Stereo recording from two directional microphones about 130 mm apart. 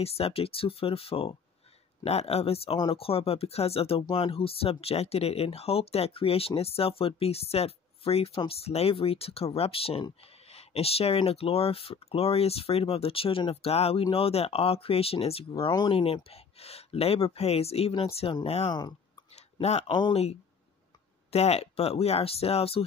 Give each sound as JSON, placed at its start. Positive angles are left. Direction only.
{"t": 0.0, "sound": "speech", "side_deg": 50}
{"t": 18.7, "sound": "speech", "side_deg": 35}
{"t": 19.3, "sound": "a sound", "side_deg": 55}
{"t": 19.9, "sound": "speech", "side_deg": 35}
{"t": 21.3, "sound": "speech", "side_deg": 55}